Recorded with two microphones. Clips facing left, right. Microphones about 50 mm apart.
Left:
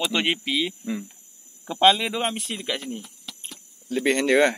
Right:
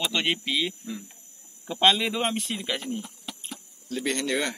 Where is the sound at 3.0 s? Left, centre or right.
Right.